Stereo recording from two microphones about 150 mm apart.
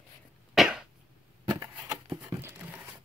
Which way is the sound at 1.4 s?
25° right (ahead or behind).